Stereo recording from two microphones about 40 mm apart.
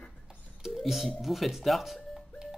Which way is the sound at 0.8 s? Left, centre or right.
Centre.